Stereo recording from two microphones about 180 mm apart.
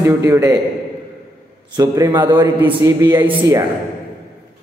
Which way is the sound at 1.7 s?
20° right (ahead or behind).